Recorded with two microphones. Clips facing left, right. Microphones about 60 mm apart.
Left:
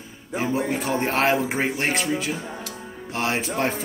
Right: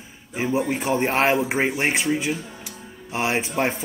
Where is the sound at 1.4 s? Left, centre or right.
Centre.